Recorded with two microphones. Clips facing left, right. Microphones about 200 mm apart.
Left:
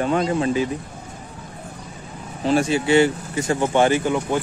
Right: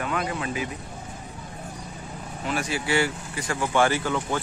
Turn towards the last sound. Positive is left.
turn(degrees=15)  # may be behind; listen again after turning